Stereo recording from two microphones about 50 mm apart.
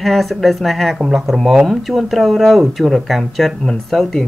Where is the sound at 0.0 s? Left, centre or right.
Centre.